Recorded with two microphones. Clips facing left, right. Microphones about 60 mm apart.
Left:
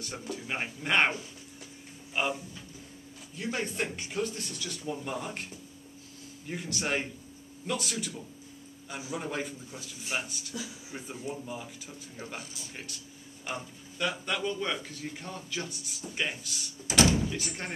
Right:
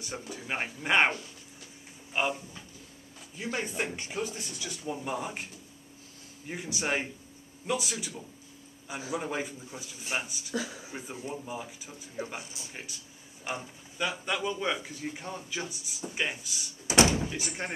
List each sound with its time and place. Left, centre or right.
0.0 s speech: centre
2.1 s speech: centre
10.5 s speech: right
11.0 s speech: centre
12.4 s speech: right
13.6 s speech: centre
16.8 s door: right
17.3 s speech: centre